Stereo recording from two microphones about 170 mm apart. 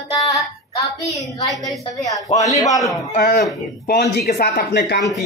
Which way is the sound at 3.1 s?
55° left (ahead or behind).